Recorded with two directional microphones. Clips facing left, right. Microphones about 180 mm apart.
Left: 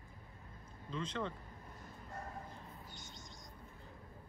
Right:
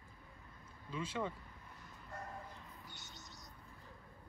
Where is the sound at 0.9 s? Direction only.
10° right (ahead or behind).